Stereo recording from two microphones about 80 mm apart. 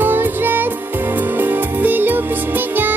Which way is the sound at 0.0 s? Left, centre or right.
Right.